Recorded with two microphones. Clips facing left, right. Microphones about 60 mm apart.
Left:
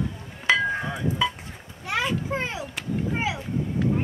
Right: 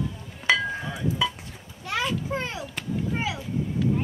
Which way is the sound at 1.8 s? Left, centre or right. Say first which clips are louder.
Left 1 dB; centre.